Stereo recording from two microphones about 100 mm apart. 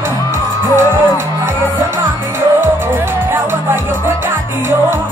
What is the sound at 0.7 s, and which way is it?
Music, 25° right (ahead or behind).